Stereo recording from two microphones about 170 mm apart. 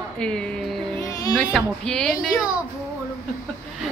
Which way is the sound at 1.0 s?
20° left (ahead or behind).